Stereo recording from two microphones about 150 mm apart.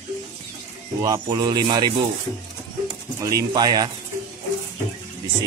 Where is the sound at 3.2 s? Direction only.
20° right (ahead or behind).